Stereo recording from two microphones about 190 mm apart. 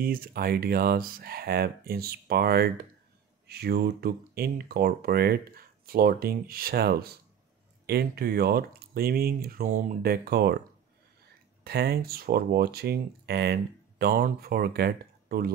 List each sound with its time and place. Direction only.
0.0 s speech: 50° right (ahead or behind)
11.6 s speech: 55° right (ahead or behind)